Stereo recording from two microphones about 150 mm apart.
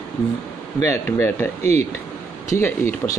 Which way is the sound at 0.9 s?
15° left (ahead or behind).